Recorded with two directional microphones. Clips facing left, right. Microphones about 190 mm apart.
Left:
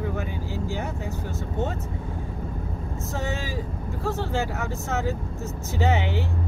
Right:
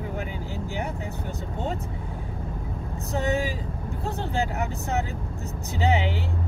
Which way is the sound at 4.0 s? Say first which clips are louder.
Left 1 dB; 20° right (ahead or behind).